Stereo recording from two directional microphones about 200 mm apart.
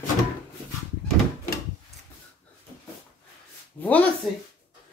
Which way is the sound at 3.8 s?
10° left (ahead or behind).